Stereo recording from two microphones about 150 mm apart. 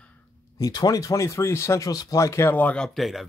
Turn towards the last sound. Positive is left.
turn(degrees=0)  # may be behind; listen again after turning